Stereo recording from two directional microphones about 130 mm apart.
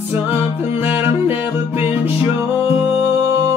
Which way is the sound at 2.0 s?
15° right (ahead or behind).